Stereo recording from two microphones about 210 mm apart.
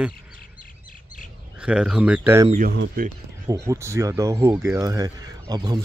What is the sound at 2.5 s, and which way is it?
Speech, 45° right (ahead or behind).